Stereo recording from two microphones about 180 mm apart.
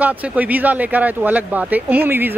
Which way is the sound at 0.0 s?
10° right (ahead or behind).